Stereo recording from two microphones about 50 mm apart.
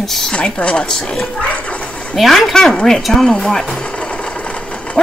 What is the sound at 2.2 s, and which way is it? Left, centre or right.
A woman's voice, centre.